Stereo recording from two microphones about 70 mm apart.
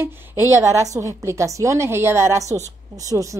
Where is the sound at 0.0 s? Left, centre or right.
Right.